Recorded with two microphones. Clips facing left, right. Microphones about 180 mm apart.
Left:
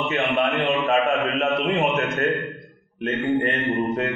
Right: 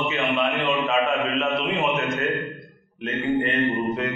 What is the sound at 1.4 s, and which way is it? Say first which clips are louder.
Mantra: left 2 dB; 45° left (ahead or behind).